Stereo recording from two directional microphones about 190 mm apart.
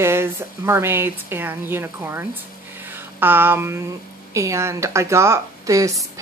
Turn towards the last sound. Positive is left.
turn(degrees=-15)  # may be behind; listen again after turning